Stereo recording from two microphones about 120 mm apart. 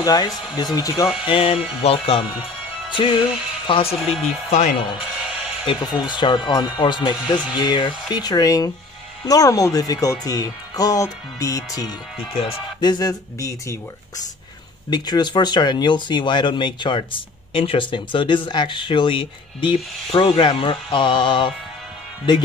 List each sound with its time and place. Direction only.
0.0 s speech: 35° left (ahead or behind)
1.2 s speech: 50° left (ahead or behind)
4.0 s speech: centre (ahead or behind)
4.5 s speech: 70° left (ahead or behind)
5.7 s speech: 40° left (ahead or behind)